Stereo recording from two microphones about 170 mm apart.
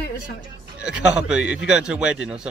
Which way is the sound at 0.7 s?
5° right (ahead or behind).